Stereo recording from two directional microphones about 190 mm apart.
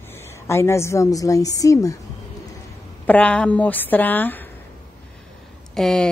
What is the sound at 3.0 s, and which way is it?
A woman's voice, 5° left (ahead or behind).